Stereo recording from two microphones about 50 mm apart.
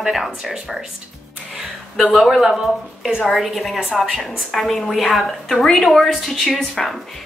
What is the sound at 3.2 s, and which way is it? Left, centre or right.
Speech, centre.